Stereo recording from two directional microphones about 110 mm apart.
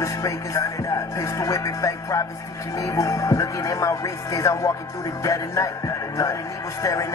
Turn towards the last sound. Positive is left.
turn(degrees=30)  # may be behind; listen again after turning